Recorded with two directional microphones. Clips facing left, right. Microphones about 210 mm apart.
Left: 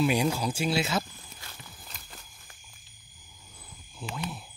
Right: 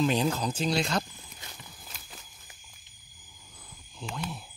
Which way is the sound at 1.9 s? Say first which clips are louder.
Even; centre (ahead or behind).